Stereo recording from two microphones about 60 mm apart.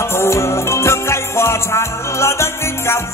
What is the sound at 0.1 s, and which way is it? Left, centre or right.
Music, left.